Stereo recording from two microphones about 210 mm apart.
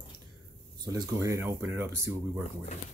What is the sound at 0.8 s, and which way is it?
Speech, 15° right (ahead or behind).